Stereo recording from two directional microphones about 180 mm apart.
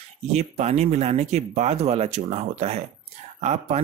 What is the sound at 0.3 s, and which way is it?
Speech, 35° right (ahead or behind).